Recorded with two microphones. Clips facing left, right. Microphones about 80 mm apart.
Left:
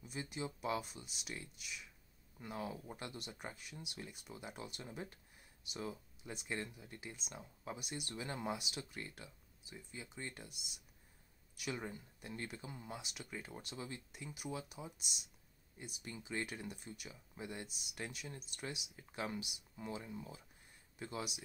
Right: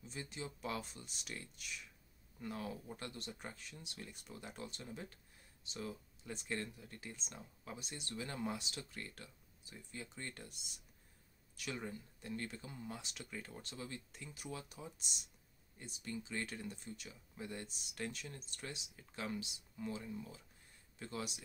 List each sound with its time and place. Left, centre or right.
0.0 s speech: centre
2.4 s speech: centre
6.3 s speech: centre
16.0 s speech: centre